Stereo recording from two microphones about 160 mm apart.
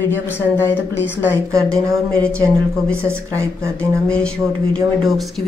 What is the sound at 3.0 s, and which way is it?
Speech, 15° right (ahead or behind).